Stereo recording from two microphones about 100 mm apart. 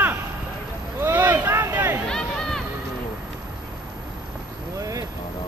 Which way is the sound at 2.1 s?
5° left (ahead or behind).